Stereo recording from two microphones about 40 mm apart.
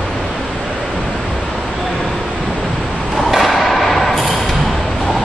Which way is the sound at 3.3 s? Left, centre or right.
Centre.